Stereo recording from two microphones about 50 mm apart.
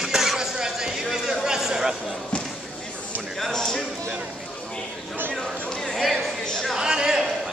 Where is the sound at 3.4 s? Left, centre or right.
Centre.